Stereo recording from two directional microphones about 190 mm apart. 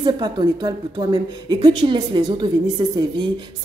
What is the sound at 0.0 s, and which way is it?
Speech, 20° right (ahead or behind).